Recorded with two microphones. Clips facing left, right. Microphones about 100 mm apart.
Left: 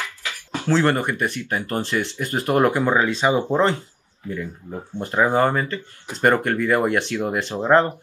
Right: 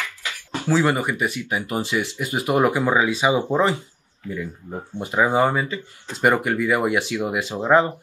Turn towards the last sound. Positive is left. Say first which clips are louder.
# left 1 dB
turn(degrees=-5)  # may be behind; listen again after turning